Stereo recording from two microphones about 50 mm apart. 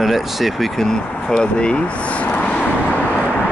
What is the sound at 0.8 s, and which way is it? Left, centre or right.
Speech, centre.